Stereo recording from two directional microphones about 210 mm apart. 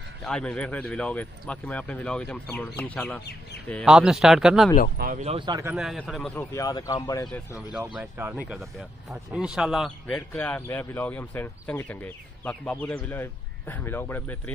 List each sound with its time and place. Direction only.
0.2 s speech: 5° left (ahead or behind)
4.9 s speech: 45° right (ahead or behind)
5.2 s speech: 25° right (ahead or behind)
5.7 s speech: centre (ahead or behind)
6.3 s speech: 15° left (ahead or behind)
8.0 s speech: 10° right (ahead or behind); by 14.5 s 5° left (ahead or behind)